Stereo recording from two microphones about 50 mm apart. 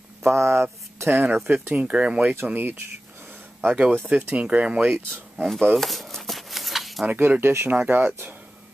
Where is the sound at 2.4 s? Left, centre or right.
Right.